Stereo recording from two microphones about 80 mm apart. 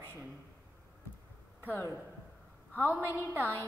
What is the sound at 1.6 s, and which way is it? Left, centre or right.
A woman's voice, left.